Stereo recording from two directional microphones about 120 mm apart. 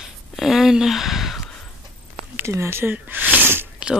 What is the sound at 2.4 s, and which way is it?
Sniff, 20° right (ahead or behind).